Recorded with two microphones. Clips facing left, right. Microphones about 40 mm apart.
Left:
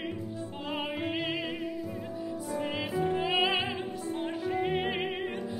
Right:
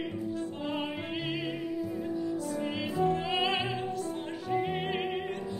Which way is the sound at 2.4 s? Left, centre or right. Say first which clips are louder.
Even; centre.